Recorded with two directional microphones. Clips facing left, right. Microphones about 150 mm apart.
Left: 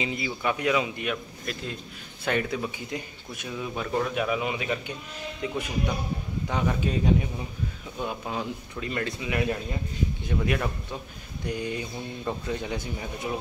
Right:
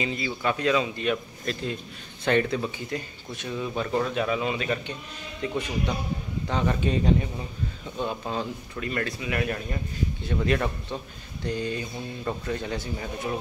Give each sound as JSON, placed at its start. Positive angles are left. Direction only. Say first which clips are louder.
{"t": 0.0, "sound": "speech", "louder": "right 1 dB", "side_deg": 15}